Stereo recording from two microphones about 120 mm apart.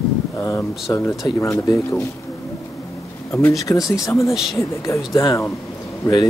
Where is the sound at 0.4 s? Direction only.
20° left (ahead or behind).